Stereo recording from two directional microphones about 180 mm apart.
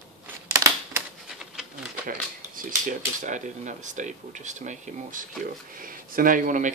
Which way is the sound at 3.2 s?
45° right (ahead or behind).